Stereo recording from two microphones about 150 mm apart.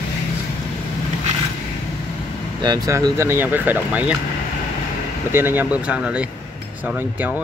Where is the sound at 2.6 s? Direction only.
25° right (ahead or behind); by 4.1 s 10° right (ahead or behind).